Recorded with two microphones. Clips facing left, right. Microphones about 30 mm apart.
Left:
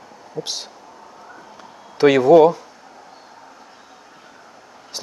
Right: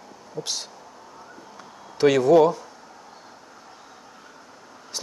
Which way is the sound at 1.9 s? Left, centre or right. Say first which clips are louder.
Left 5 dB; centre.